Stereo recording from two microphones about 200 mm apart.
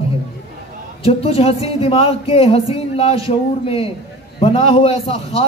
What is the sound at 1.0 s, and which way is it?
A man's voice, 30° left (ahead or behind).